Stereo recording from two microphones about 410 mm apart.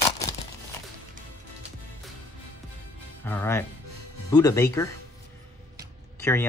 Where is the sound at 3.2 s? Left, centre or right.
Centre.